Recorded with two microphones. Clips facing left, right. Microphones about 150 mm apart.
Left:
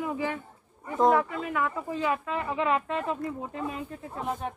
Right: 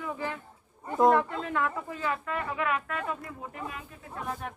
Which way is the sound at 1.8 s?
20° left (ahead or behind).